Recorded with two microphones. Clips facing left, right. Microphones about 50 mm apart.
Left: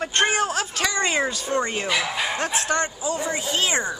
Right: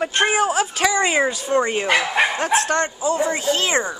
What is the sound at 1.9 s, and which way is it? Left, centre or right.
Speech, right.